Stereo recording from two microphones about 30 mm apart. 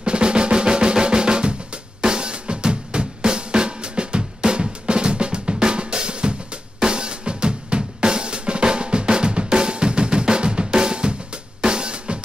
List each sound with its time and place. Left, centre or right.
0.0 s drum: right
11.6 s drum kit: right